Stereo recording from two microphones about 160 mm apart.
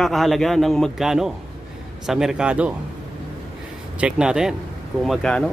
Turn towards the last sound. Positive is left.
turn(degrees=5)  # may be behind; listen again after turning